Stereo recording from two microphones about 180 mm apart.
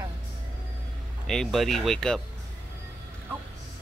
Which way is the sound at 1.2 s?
5° left (ahead or behind).